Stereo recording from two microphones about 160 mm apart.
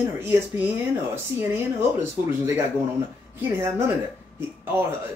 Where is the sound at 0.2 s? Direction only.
15° right (ahead or behind).